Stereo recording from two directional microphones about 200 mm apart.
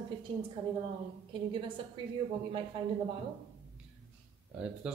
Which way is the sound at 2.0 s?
25° right (ahead or behind).